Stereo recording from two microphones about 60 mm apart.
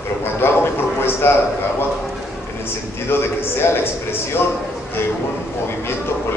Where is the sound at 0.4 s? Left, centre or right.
Left.